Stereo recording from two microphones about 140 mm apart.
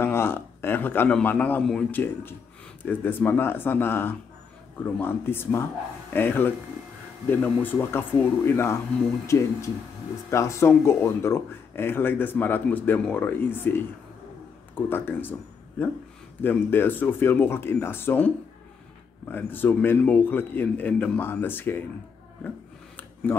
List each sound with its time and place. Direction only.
0.0 s speech: 15° left (ahead or behind)
16.3 s speech: 15° left (ahead or behind)